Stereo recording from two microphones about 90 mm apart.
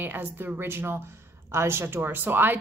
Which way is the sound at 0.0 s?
20° right (ahead or behind).